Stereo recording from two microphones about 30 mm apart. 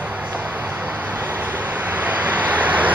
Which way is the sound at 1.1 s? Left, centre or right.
Right.